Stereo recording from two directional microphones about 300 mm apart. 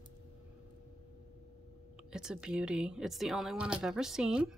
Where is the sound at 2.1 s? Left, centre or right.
Centre.